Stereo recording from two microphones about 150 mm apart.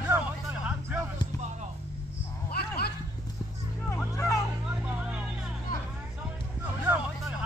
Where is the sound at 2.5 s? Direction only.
90° left.